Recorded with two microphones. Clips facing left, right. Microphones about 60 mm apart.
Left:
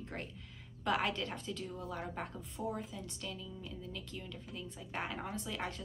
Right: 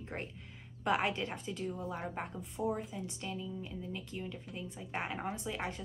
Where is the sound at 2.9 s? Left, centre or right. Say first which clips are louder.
Right 4 dB; right.